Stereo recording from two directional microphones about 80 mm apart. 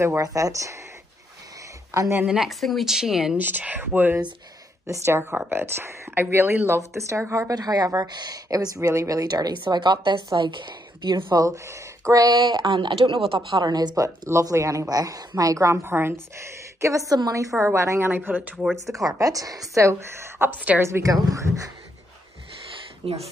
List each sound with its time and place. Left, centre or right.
0.2 s speech: right
1.9 s speech: right
2.2 s a woman's voice: centre
3.3 s speech: right
4.8 s a woman's voice: right
11.3 s a woman's voice: right
13.6 s speech: right; by 18.7 s centre
19.1 s a woman's voice: right
20.8 s speech: right